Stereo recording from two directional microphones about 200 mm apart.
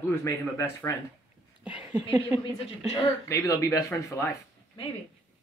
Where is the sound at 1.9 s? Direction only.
20° right (ahead or behind).